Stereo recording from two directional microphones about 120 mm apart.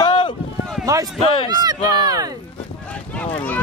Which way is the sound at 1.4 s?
35° right (ahead or behind).